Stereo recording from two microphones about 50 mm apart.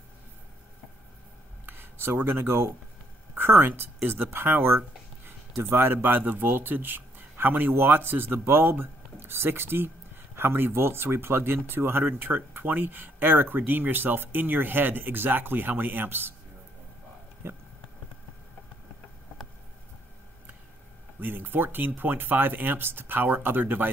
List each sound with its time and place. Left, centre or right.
1.7 s speech: right
17.4 s speech: right
21.2 s speech: right